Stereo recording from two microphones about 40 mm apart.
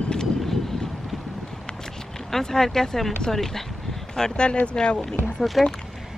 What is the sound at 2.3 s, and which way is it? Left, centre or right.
Speech, centre.